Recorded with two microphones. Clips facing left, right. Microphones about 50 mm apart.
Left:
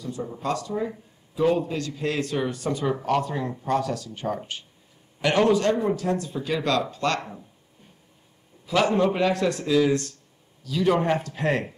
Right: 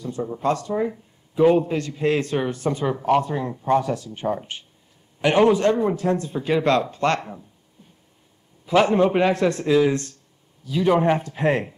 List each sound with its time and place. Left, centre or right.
0.4 s a man's voice: right
2.8 s speech: centre
3.1 s a man's voice: centre
7.2 s speech: centre
8.6 s a man's voice: right